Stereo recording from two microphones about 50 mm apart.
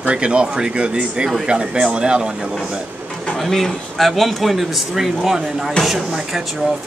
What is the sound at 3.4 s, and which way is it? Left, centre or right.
A man's voice, centre.